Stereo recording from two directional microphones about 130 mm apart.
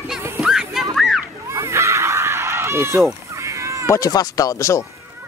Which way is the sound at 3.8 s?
25° left (ahead or behind).